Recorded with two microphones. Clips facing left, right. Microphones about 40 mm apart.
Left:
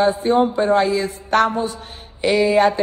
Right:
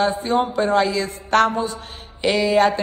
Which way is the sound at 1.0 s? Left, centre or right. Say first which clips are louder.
Even; right.